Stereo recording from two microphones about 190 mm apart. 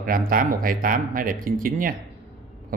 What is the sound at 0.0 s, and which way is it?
Speech, 50° right (ahead or behind).